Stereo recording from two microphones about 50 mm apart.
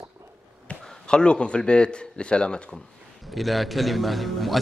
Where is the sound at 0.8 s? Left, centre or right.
Centre.